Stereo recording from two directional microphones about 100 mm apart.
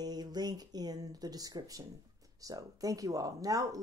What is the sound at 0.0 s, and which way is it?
Speech, 40° right (ahead or behind).